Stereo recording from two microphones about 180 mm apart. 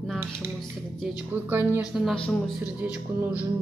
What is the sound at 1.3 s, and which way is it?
Music, 15° right (ahead or behind).